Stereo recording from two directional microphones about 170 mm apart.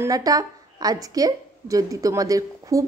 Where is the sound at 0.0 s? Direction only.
20° right (ahead or behind).